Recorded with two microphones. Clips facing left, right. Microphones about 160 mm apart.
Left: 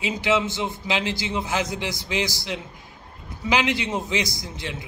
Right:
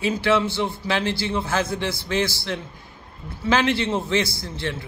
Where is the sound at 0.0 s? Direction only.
15° left (ahead or behind).